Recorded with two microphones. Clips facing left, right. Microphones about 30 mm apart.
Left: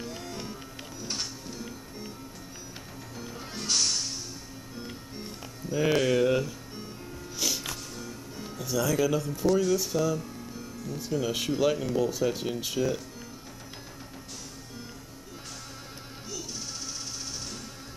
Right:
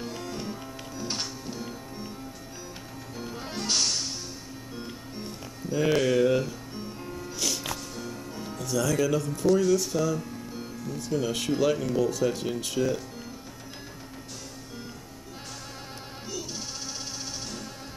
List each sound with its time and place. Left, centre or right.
0.1 s music: centre
0.9 s music: centre
3.3 s music: centre
7.6 s music: centre
8.5 s speech: centre
16.3 s music: centre